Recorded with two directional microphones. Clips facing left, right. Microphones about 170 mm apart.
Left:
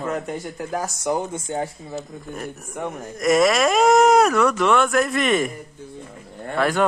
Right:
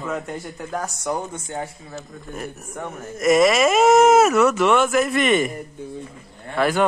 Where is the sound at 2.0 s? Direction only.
Centre (ahead or behind).